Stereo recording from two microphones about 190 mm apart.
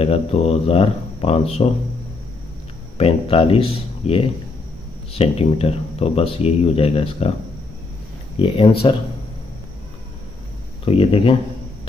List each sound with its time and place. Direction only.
0.0 s speech: 30° left (ahead or behind)
3.0 s speech: 30° left (ahead or behind)
8.4 s speech: 25° left (ahead or behind)
10.9 s speech: 30° left (ahead or behind)